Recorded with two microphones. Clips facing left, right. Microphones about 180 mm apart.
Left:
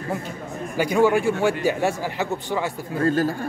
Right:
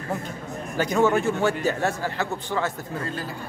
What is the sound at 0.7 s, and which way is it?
A man's voice, 10° left (ahead or behind).